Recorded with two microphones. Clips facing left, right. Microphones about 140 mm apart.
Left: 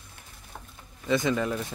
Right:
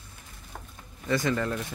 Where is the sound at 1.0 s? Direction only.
15° left (ahead or behind).